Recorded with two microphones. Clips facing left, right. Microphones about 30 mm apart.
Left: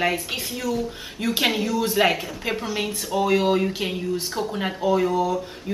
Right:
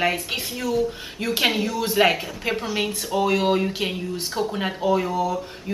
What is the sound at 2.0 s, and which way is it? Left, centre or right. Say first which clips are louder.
Speech: right 4 dB; centre.